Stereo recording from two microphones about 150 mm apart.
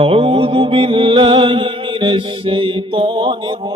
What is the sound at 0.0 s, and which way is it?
Mantra, 35° right (ahead or behind).